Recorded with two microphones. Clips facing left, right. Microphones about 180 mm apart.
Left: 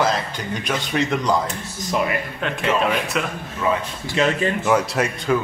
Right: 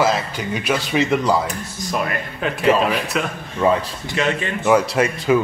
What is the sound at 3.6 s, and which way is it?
Speech, 35° right (ahead or behind).